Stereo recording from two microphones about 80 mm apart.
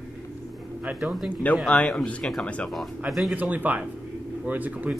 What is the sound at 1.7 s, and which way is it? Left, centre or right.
Speech, centre.